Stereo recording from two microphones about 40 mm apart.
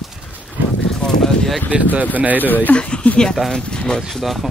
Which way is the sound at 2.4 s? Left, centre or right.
Left.